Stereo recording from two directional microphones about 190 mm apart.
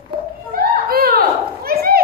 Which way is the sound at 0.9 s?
50° right (ahead or behind).